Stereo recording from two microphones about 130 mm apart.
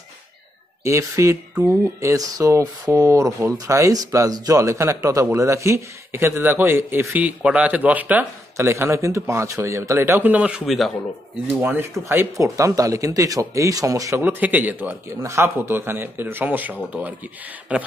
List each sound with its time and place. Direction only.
0.8 s speech: 20° right (ahead or behind); by 10.9 s 5° right (ahead or behind)
11.4 s speech: 15° right (ahead or behind)